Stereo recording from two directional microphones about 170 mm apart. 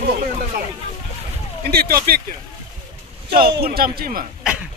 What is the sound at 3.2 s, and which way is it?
Speech, 60° right (ahead or behind).